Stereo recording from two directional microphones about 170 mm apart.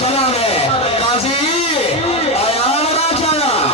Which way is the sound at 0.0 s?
35° left (ahead or behind).